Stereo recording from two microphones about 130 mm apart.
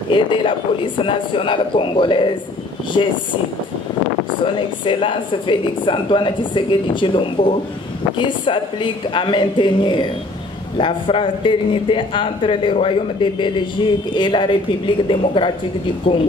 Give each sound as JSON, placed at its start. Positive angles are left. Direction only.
{"t": 0.1, "sound": "a woman's voice", "side_deg": 40}
{"t": 4.6, "sound": "a woman's voice", "side_deg": 40}